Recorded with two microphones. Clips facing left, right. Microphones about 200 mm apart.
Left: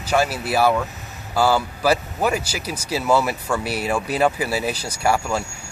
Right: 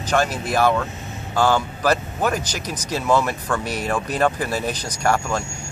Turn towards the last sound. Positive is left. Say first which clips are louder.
# even
turn(degrees=10)  # may be behind; listen again after turning